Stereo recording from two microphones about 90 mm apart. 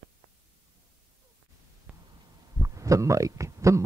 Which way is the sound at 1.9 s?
15° right (ahead or behind).